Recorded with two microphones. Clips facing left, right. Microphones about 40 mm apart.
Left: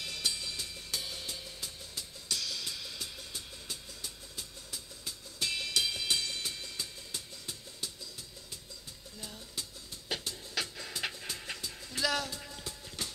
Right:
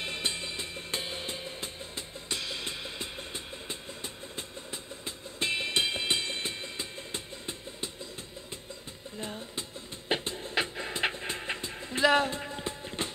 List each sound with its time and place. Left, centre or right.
0.0 s music: right
9.2 s music: right